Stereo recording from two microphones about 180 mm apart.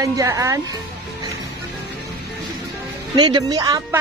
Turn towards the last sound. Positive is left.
turn(degrees=-20)  # may be behind; listen again after turning